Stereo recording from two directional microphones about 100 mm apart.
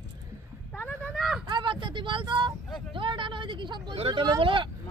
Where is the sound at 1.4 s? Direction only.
50° right (ahead or behind).